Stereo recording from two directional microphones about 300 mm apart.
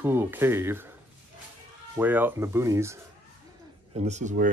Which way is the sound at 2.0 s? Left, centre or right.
Centre.